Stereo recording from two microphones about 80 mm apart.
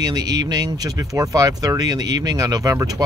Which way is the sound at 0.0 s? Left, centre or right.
Right.